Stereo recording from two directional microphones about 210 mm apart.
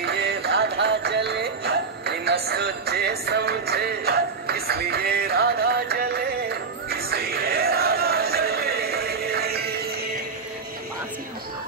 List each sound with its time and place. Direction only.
0.0 s music: 50° right (ahead or behind)